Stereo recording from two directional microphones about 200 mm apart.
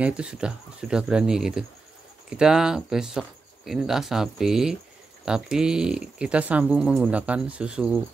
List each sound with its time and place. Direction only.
0.0 s speech: 5° right (ahead or behind)